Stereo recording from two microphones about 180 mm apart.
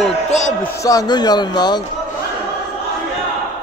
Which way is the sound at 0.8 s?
20° left (ahead or behind).